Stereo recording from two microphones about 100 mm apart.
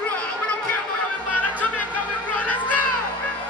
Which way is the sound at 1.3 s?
15° left (ahead or behind).